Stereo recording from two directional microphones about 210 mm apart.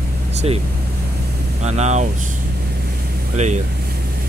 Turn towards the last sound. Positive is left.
turn(degrees=-35)  # may be behind; listen again after turning